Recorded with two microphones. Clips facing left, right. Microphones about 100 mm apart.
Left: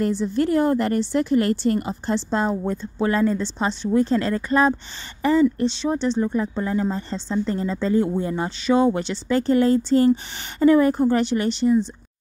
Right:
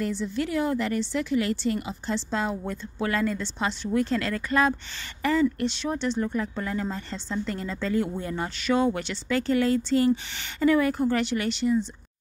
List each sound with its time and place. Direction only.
0.0 s a woman's voice: 40° left (ahead or behind)
2.6 s speech: 25° left (ahead or behind)